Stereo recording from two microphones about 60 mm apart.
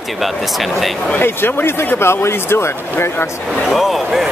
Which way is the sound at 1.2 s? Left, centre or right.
Left.